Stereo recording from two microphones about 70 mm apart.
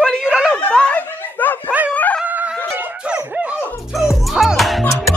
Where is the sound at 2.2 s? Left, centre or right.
Right.